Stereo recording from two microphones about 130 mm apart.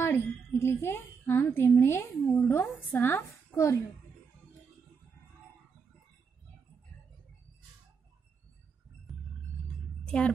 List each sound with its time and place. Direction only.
0.0 s a woman's voice: 20° left (ahead or behind)
10.0 s a woman's voice: 5° left (ahead or behind)